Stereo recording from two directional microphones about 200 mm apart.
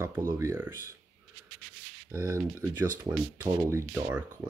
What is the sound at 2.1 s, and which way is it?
Speech, 15° right (ahead or behind).